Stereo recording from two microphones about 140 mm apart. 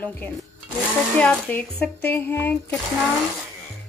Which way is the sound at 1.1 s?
10° left (ahead or behind).